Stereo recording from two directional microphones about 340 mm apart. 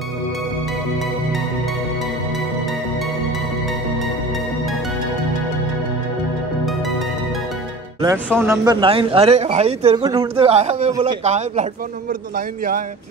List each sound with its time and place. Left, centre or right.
8.0 s a man's voice: centre; by 12.8 s right